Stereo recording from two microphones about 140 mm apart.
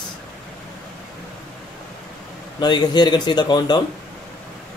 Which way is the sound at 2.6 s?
30° left (ahead or behind).